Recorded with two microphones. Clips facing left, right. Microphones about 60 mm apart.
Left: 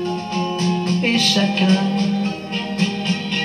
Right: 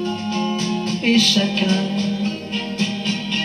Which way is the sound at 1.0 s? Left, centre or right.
Left.